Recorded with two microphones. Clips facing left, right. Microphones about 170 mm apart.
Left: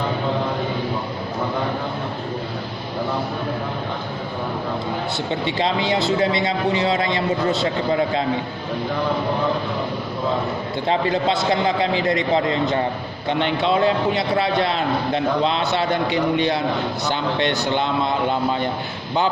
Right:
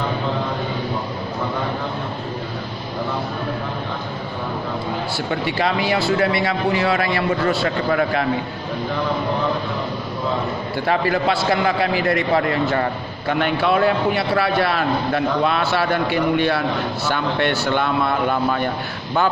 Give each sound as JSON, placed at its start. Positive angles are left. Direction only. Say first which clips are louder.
{"t": 5.3, "sound": "a man's voice", "louder": "right 1 dB", "side_deg": 20}
{"t": 10.9, "sound": "a man's voice", "louder": "right 1 dB", "side_deg": 20}